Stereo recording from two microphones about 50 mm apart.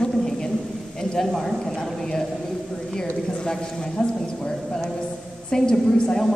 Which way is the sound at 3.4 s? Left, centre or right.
Centre.